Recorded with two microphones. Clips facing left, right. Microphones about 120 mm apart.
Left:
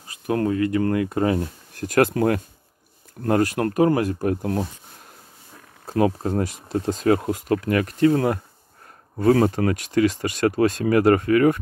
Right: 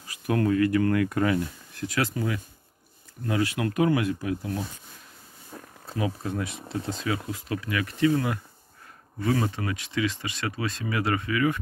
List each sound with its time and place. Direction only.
0.0 s speech: 30° left (ahead or behind)
1.8 s speech: 50° left (ahead or behind)
5.9 s speech: 50° left (ahead or behind)